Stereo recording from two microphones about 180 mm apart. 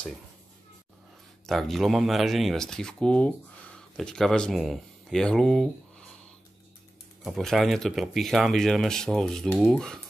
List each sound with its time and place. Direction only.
1.4 s speech: centre (ahead or behind)
7.2 s speech: centre (ahead or behind)